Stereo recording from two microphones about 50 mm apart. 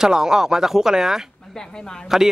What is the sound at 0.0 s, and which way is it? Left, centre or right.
A man's voice, centre.